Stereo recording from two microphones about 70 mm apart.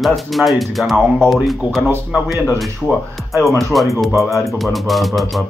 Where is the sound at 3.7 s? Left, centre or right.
Centre.